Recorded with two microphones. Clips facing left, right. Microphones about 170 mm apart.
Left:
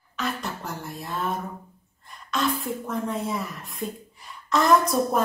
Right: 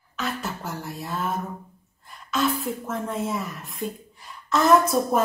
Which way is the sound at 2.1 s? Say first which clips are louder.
Right 2 dB; centre (ahead or behind).